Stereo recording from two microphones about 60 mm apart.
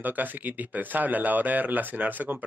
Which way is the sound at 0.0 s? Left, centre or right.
Right.